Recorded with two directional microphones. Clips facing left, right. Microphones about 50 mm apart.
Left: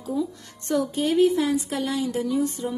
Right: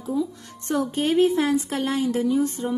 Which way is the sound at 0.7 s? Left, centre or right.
Right.